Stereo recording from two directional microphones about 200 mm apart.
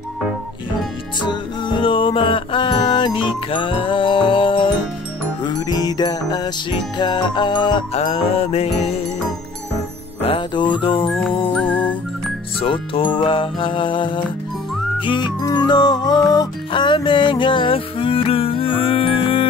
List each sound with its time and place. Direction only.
1.2 s music: 25° left (ahead or behind)
10.2 s music: 25° left (ahead or behind)
11.5 s music: 10° left (ahead or behind)
12.5 s music: 25° left (ahead or behind)